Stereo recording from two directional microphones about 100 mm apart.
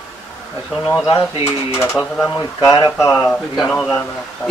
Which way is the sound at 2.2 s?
35° left (ahead or behind).